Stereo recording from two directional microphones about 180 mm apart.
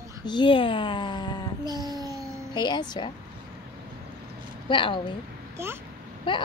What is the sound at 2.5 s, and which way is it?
Speech, 25° left (ahead or behind).